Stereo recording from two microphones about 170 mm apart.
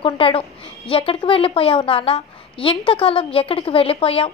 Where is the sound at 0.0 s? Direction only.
35° left (ahead or behind).